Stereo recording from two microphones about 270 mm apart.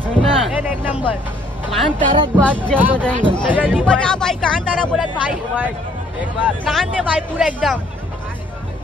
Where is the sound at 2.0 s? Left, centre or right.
Centre.